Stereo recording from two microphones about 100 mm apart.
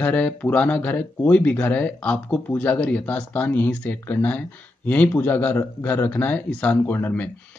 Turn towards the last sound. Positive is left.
turn(degrees=20)  # may be behind; listen again after turning